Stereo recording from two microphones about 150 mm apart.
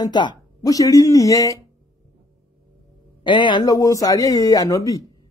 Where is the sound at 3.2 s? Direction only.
30° left (ahead or behind).